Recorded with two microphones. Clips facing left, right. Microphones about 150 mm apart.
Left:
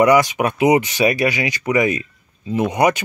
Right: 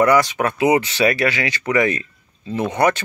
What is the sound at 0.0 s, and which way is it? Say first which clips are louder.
Speech: left 2 dB; 15° left (ahead or behind).